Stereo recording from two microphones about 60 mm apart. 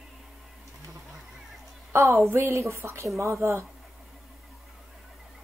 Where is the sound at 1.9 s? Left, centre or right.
Right.